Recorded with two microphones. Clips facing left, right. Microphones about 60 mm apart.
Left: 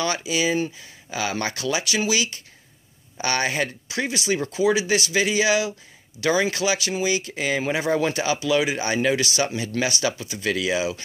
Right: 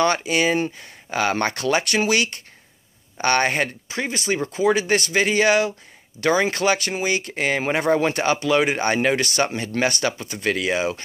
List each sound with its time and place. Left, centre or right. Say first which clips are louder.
0.0 s speech: right 4 dB; right
4.0 s speech: even; right